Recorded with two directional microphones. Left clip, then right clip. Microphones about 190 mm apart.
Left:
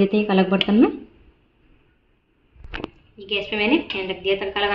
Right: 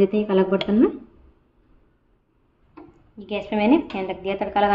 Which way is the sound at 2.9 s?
65° right (ahead or behind).